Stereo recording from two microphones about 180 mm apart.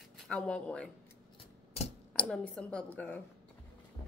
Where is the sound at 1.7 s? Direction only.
35° left (ahead or behind).